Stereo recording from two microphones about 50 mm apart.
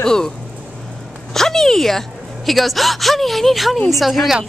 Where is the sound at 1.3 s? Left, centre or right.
Centre.